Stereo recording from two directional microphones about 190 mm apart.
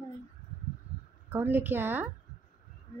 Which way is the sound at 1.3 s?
10° right (ahead or behind).